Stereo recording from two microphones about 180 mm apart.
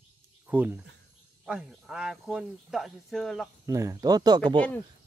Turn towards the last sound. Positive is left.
turn(degrees=-25)  # may be behind; listen again after turning